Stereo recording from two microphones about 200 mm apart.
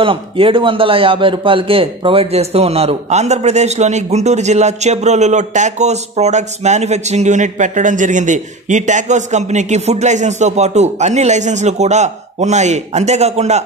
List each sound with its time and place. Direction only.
0.0 s a man's voice: 25° right (ahead or behind)